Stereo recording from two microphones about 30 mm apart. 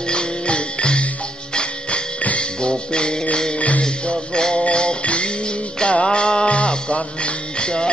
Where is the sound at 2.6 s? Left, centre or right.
Left.